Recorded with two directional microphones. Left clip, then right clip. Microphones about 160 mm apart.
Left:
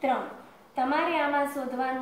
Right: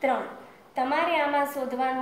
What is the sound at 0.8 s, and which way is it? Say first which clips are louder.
Speech: right 2 dB; 40° right (ahead or behind).